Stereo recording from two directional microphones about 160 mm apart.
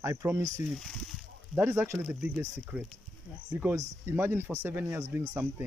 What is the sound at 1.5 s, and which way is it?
Speech, 10° right (ahead or behind).